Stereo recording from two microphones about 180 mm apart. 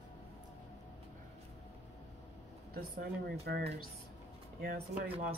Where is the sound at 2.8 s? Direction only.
55° right (ahead or behind).